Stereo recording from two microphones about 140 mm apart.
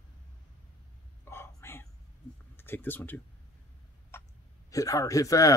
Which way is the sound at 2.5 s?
15° left (ahead or behind).